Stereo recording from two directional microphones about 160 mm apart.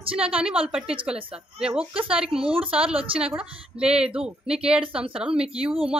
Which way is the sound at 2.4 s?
35° right (ahead or behind).